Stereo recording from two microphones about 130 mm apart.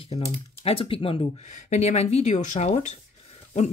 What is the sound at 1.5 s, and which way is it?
Speech, 60° left (ahead or behind).